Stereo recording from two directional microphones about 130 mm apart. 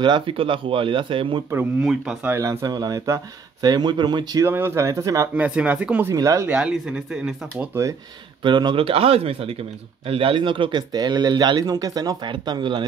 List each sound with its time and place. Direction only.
0.0 s speech: 40° right (ahead or behind)
1.8 s speech: 5° right (ahead or behind)
2.2 s speech: 20° right (ahead or behind)
4.5 s speech: 20° right (ahead or behind)
5.3 s speech: 10° right (ahead or behind)
6.0 s speech: 25° right (ahead or behind)
6.5 s speech: 5° right (ahead or behind)
8.5 s speech: 35° right (ahead or behind)